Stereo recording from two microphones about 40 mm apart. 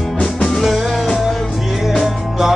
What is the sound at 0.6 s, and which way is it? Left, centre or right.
Music, centre.